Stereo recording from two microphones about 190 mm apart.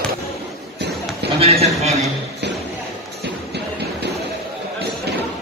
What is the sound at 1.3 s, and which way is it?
Speech, 30° right (ahead or behind).